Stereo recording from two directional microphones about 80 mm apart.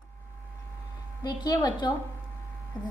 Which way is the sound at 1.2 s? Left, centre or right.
Left.